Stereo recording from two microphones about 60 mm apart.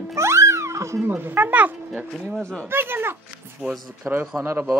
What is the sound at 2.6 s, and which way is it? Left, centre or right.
Speech, right.